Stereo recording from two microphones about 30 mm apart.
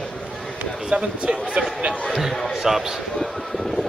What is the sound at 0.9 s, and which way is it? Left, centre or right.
Speech, right.